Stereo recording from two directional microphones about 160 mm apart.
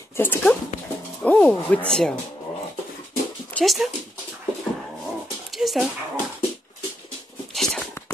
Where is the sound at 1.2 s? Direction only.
10° left (ahead or behind).